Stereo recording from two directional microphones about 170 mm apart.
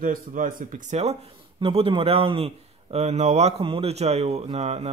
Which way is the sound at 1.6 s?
35° right (ahead or behind).